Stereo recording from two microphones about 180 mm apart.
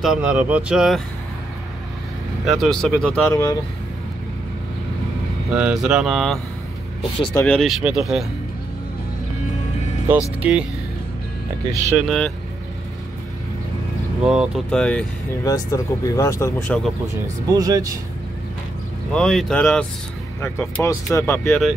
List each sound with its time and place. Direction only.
0.0 s speech: 5° right (ahead or behind)
2.4 s speech: centre (ahead or behind)
3.3 s speech: 15° left (ahead or behind)
5.5 s speech: 5° right (ahead or behind)
10.4 s speech: 5° right (ahead or behind)
12.0 s speech: 5° left (ahead or behind)
14.2 s speech: 5° right (ahead or behind)
14.7 s speech: 5° left (ahead or behind)
15.4 s speech: 20° left (ahead or behind)
17.6 s speech: 20° right (ahead or behind)
19.1 s speech: 5° left (ahead or behind)
21.5 s speech: centre (ahead or behind)